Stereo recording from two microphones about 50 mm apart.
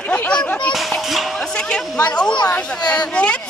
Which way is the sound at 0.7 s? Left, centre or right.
Centre.